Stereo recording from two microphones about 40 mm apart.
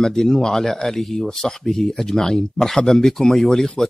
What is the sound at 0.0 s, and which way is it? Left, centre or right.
Speech, centre.